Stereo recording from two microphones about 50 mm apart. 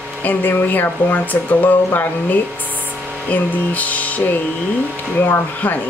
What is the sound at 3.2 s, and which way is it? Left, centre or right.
Speech, left.